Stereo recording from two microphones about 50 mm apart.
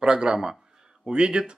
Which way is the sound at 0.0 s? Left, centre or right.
Centre.